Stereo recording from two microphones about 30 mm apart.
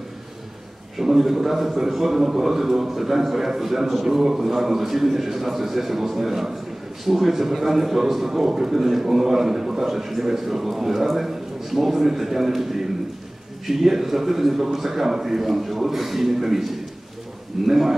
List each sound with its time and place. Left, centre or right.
1.0 s a man's voice: centre
17.6 s a man's voice: centre